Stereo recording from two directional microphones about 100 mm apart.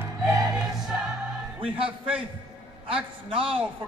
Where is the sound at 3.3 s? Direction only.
65° right (ahead or behind).